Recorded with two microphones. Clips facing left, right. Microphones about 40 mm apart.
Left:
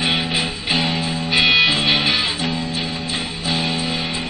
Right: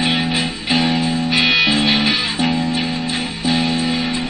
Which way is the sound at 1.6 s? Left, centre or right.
Left.